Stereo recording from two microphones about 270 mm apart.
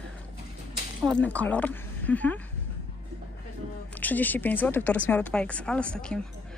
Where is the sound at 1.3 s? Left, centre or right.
Centre.